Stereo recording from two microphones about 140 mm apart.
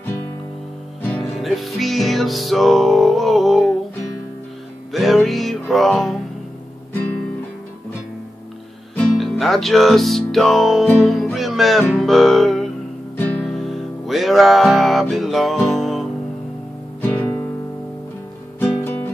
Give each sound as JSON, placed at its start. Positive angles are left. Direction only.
{"t": 1.4, "sound": "music", "side_deg": 0}
{"t": 4.9, "sound": "music", "side_deg": 0}
{"t": 8.9, "sound": "music", "side_deg": 5}
{"t": 17.0, "sound": "music", "side_deg": 15}
{"t": 18.6, "sound": "music", "side_deg": 15}